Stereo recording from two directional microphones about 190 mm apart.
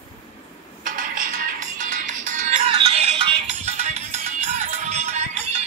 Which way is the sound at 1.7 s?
40° right (ahead or behind).